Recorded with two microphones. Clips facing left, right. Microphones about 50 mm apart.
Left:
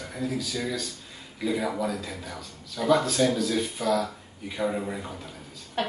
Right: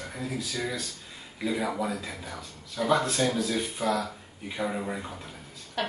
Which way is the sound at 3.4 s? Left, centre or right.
Right.